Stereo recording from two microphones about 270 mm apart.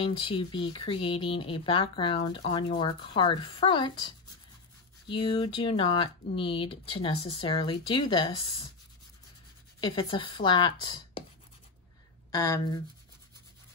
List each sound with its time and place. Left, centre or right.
0.0 s speech: centre
9.8 s speech: centre
12.3 s speech: centre